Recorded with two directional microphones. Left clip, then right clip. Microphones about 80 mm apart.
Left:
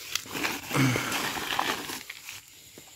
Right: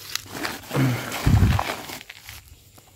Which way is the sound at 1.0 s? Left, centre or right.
Right.